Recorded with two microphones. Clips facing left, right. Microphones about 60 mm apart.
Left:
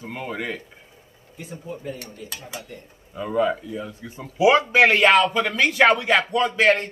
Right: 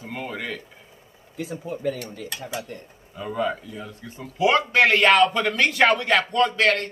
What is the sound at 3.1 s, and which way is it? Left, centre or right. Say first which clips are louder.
A man's voice: left 4 dB; centre.